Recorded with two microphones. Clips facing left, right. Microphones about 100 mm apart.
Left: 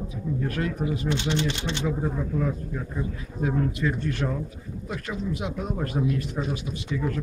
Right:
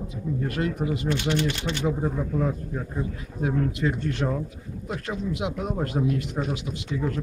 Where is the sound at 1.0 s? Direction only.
20° left (ahead or behind).